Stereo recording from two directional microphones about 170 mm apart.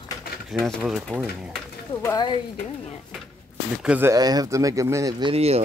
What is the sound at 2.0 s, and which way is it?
Speech, 20° left (ahead or behind).